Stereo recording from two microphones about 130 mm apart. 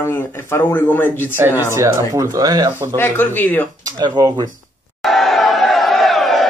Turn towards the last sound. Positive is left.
turn(degrees=0)  # may be behind; listen again after turning